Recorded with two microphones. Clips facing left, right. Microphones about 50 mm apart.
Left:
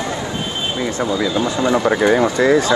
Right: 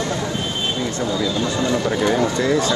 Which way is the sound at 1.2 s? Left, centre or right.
Centre.